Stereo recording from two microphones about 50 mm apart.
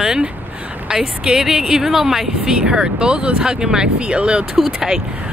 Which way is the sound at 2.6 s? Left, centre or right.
Centre.